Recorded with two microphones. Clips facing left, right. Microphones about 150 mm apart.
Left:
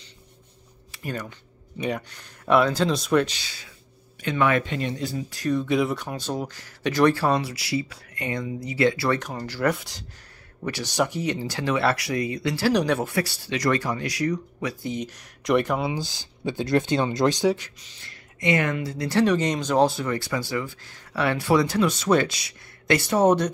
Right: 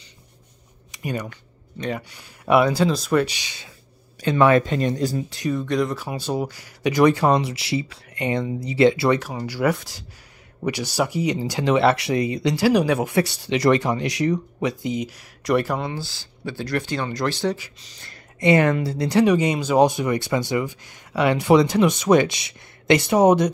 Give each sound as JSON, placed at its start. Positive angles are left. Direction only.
{"t": 0.9, "sound": "speech", "side_deg": -15}
{"t": 4.2, "sound": "speech", "side_deg": -35}
{"t": 5.5, "sound": "speech", "side_deg": 0}
{"t": 6.0, "sound": "speech", "side_deg": -10}
{"t": 9.2, "sound": "speech", "side_deg": -5}
{"t": 13.1, "sound": "speech", "side_deg": -20}
{"t": 15.9, "sound": "speech", "side_deg": 20}
{"t": 18.4, "sound": "speech", "side_deg": -35}
{"t": 19.0, "sound": "speech", "side_deg": -10}